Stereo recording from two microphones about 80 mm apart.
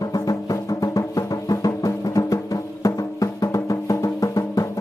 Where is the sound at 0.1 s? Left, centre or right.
Left.